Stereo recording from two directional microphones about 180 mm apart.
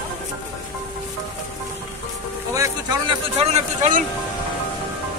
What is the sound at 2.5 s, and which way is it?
Boat, 20° right (ahead or behind).